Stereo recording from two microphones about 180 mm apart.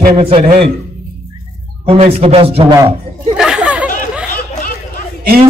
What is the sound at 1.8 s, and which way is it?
Speech, 35° right (ahead or behind).